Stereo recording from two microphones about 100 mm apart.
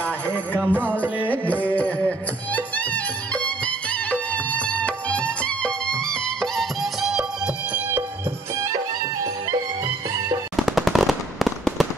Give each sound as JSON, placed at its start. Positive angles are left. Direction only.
{"t": 0.0, "sound": "music", "side_deg": 15}
{"t": 0.6, "sound": "music", "side_deg": -15}
{"t": 1.3, "sound": "music", "side_deg": 15}
{"t": 10.5, "sound": "fireworks", "side_deg": 0}